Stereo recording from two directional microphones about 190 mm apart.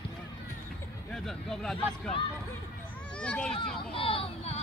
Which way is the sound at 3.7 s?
30° left (ahead or behind).